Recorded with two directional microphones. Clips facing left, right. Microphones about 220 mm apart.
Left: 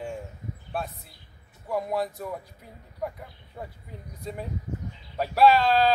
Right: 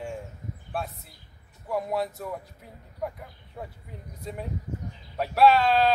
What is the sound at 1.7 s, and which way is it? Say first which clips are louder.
Speech: even; centre (ahead or behind).